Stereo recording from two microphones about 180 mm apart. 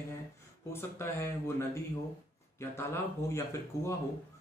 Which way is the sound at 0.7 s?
15° left (ahead or behind).